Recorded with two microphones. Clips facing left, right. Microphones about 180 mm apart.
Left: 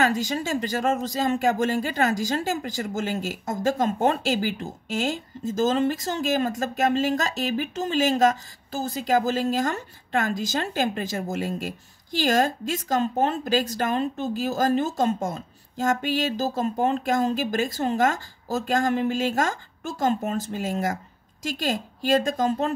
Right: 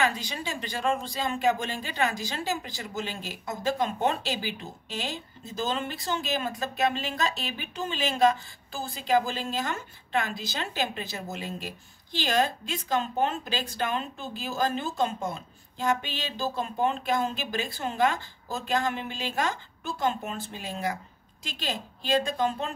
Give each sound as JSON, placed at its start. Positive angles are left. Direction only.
{"t": 0.0, "sound": "speech", "side_deg": 45}